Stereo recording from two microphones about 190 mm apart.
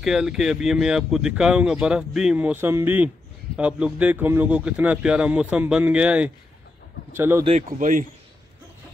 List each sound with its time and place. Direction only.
0.0 s a man's voice: centre (ahead or behind)
7.4 s speech: 40° right (ahead or behind)